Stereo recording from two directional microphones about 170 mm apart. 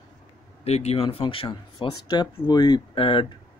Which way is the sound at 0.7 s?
40° left (ahead or behind).